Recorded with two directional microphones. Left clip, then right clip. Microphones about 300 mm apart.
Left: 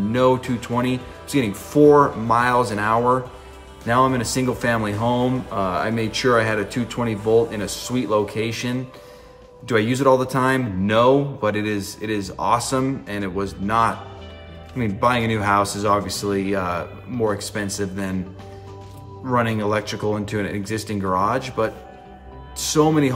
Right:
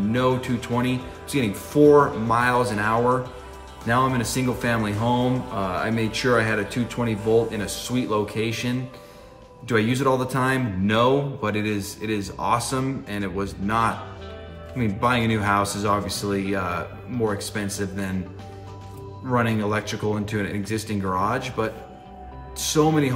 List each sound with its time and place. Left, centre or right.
0.1 s speech: centre
19.2 s speech: centre